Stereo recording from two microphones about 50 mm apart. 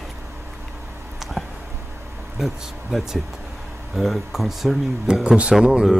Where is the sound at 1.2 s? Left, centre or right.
Centre.